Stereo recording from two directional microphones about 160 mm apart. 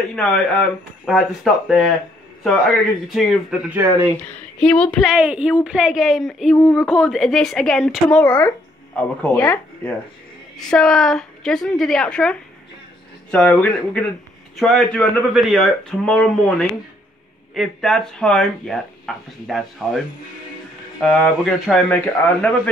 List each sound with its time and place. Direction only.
0.1 s speech: centre (ahead or behind)
4.6 s speech: 5° left (ahead or behind)
5.0 s speech: 5° right (ahead or behind)
6.5 s speech: 15° left (ahead or behind)
6.8 s speech: centre (ahead or behind)
10.6 s speech: 5° left (ahead or behind)
21.0 s speech: 5° left (ahead or behind)